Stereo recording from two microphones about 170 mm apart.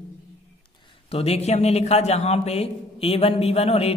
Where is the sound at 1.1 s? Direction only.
35° left (ahead or behind).